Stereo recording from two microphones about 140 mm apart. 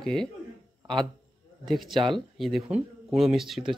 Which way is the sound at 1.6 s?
Centre (ahead or behind).